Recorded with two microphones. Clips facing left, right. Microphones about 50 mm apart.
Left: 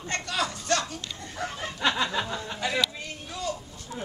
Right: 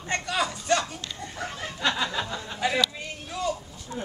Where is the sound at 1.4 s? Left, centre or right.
Centre.